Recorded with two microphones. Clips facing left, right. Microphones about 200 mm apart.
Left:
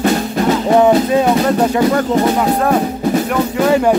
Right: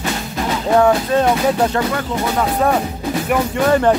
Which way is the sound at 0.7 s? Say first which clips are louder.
Left 2 dB; 20° left (ahead or behind).